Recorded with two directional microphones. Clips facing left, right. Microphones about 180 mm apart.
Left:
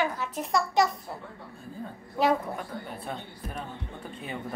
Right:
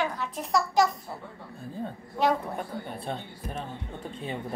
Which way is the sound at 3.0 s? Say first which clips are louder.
Right 2 dB; 25° right (ahead or behind).